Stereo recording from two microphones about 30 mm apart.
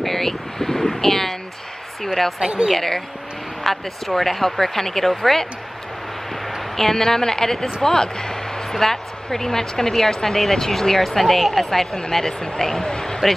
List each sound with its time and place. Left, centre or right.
0.0 s wind noise: centre
2.4 s a woman's voice: right
3.6 s speech: centre
6.8 s a woman's voice: centre